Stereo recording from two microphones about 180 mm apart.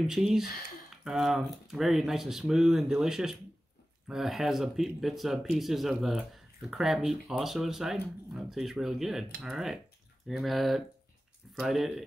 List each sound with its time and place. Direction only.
0.0 s speech: centre (ahead or behind)